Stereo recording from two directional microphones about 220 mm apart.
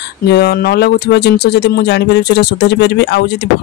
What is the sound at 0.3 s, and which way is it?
Speech, 45° left (ahead or behind).